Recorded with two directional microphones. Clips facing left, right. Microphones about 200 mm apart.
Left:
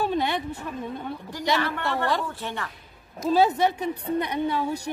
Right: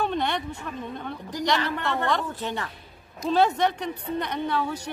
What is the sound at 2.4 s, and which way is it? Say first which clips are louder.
Speech: right 2 dB; 20° right (ahead or behind).